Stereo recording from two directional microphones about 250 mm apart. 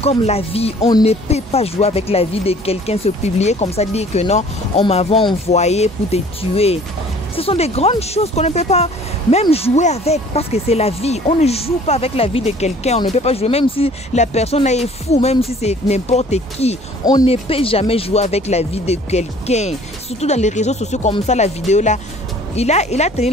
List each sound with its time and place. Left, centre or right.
0.0 s speech: left